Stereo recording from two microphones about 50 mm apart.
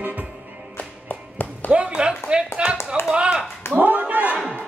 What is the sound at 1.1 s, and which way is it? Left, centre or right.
Clapping, left.